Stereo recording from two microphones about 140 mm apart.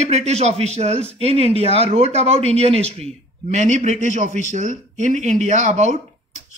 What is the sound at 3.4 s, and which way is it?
Speech, 60° right (ahead or behind).